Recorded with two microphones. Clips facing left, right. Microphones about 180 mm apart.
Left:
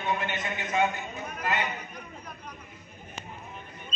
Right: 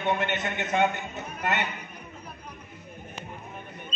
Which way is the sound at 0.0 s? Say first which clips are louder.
Right 4 dB; 60° right (ahead or behind).